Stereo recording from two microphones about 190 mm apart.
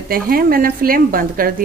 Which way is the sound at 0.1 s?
50° right (ahead or behind).